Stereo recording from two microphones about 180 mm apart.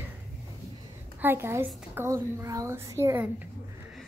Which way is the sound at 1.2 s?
15° right (ahead or behind).